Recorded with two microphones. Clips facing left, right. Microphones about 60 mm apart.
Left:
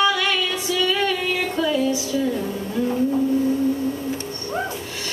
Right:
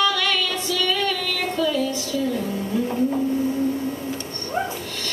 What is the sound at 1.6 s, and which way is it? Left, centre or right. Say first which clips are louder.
Music: left 1 dB; centre.